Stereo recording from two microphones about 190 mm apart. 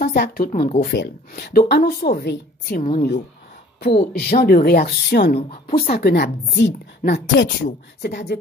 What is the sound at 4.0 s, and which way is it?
A woman's voice, 50° left (ahead or behind).